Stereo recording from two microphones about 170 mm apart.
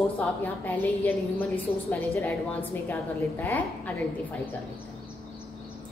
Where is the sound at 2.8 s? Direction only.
15° left (ahead or behind).